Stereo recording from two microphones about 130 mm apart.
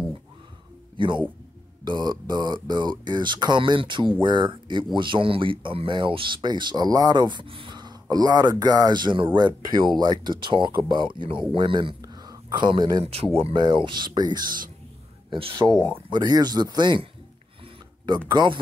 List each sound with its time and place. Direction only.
0.9 s speech: 40° right (ahead or behind)
12.0 s a sound: 30° right (ahead or behind); by 13.3 s 45° right (ahead or behind)
13.4 s speech: 40° right (ahead or behind)
16.1 s speech: 30° right (ahead or behind)
18.3 s speech: 35° right (ahead or behind)